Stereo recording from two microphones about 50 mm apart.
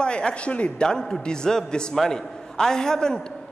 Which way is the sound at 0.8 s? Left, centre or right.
Centre.